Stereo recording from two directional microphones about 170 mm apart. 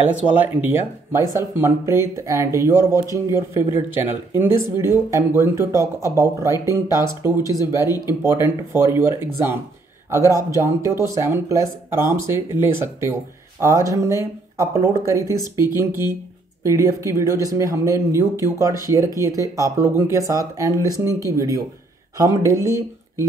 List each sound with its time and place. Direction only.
0.0 s speech: 10° right (ahead or behind)